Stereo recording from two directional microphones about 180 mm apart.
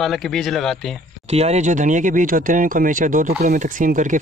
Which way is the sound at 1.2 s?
35° right (ahead or behind).